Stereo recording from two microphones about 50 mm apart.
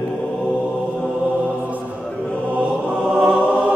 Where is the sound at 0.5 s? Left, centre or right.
Left.